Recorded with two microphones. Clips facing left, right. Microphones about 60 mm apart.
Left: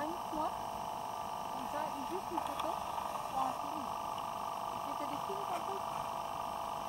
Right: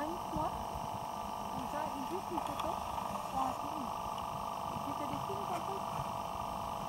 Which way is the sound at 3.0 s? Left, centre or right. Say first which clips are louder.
Even; centre.